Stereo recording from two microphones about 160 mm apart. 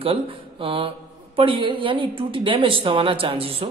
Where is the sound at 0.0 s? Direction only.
35° right (ahead or behind).